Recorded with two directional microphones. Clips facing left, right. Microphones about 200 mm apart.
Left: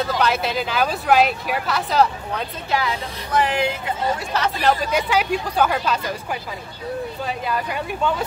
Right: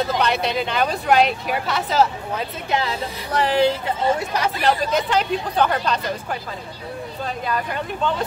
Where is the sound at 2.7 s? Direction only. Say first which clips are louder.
Even; 30° right (ahead or behind).